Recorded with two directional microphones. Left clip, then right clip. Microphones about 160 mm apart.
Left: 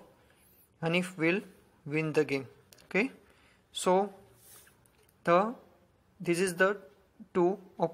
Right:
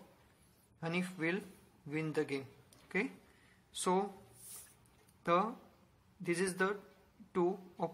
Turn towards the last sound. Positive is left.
turn(degrees=25)  # may be behind; listen again after turning